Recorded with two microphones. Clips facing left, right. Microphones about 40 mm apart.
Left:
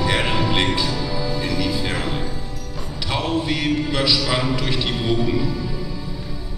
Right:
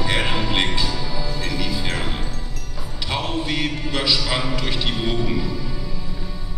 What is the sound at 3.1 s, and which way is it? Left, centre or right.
A man's voice, centre.